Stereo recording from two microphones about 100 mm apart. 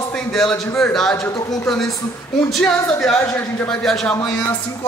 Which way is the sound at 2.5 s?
5° left (ahead or behind).